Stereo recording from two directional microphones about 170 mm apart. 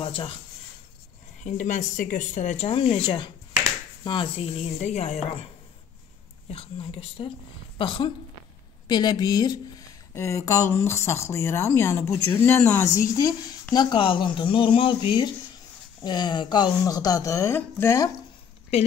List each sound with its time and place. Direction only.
0.0 s speech: 30° left (ahead or behind)
1.4 s speech: 45° left (ahead or behind); by 4.5 s 30° left (ahead or behind)
4.7 s speech: 40° left (ahead or behind)
6.5 s speech: 35° left (ahead or behind); by 18.1 s 15° left (ahead or behind)